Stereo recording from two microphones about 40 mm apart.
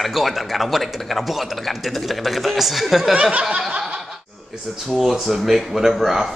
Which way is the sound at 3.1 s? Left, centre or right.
Right.